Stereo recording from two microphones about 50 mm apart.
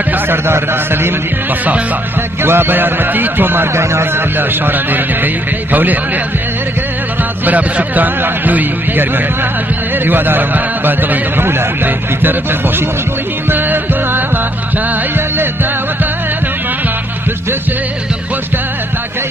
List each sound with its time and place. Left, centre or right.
2.4 s speech: right
3.7 s speech: right
4.4 s speech: right
7.4 s speech: right
10.0 s speech: right
13.5 s music: right